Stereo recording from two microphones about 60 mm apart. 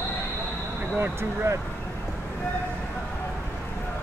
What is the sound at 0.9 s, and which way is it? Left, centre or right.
Speech, right.